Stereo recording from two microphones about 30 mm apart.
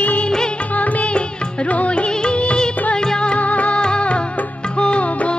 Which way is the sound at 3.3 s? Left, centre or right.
Left.